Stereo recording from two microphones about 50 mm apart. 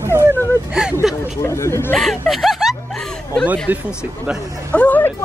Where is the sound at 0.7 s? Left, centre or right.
Centre.